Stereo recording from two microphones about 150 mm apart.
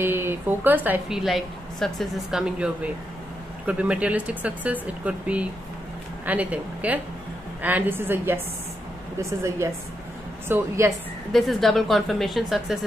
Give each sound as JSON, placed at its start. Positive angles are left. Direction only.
{"t": 0.0, "sound": "a woman's voice", "side_deg": -15}
{"t": 11.3, "sound": "speech", "side_deg": 0}